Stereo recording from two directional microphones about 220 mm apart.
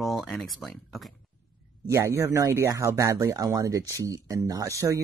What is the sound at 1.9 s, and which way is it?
Speech, 10° right (ahead or behind).